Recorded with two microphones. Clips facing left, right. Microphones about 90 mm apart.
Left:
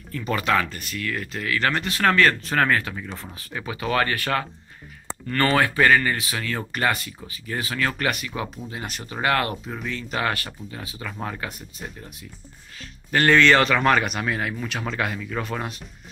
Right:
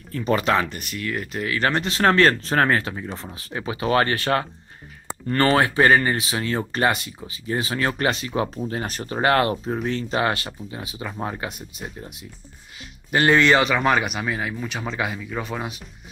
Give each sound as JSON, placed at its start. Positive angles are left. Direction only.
{"t": 0.2, "sound": "speech", "side_deg": -25}
{"t": 8.6, "sound": "speech", "side_deg": -40}
{"t": 13.1, "sound": "speech", "side_deg": -15}